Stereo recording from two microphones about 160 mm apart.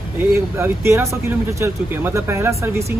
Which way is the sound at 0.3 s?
15° right (ahead or behind).